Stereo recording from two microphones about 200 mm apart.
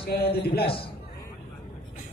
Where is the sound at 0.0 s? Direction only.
50° left (ahead or behind).